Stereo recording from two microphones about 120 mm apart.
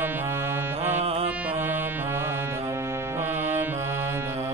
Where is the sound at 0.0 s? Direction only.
15° right (ahead or behind).